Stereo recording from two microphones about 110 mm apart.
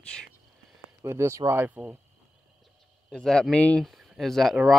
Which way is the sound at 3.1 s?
5° left (ahead or behind).